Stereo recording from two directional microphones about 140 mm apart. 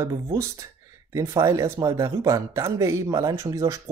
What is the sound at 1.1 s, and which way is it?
Speech, 25° right (ahead or behind).